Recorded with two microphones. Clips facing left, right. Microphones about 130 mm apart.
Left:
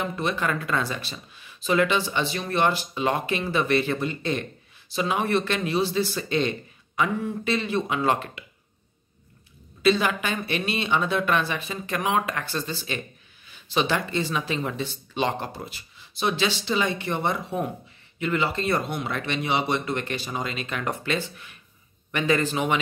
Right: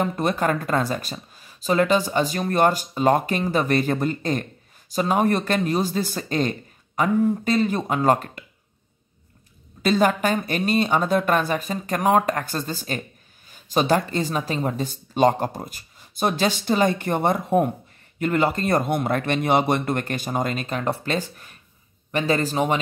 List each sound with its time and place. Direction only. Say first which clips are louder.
0.0 s speech: right 5 dB; 45° right (ahead or behind)
9.8 s speech: right 2 dB; 45° right (ahead or behind)